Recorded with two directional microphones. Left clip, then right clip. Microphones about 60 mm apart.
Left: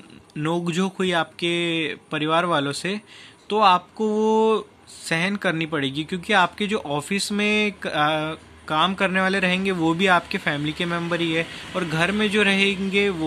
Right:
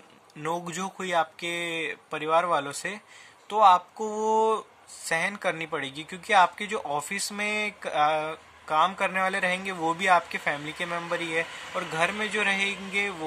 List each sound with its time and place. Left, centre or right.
0.7 s speech: right
6.8 s speech: left
7.1 s speech: right
9.6 s speech: left
9.9 s speech: right